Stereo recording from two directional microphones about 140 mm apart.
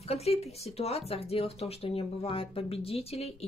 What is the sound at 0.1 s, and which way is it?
A woman's voice, 50° left (ahead or behind).